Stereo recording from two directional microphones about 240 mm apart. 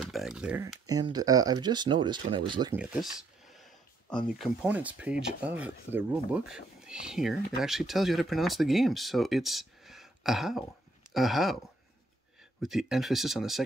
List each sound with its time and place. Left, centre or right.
0.0 s speech: centre
2.7 s speech: centre
12.6 s speech: centre